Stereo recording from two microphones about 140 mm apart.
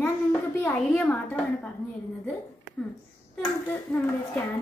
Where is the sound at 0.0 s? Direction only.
15° left (ahead or behind).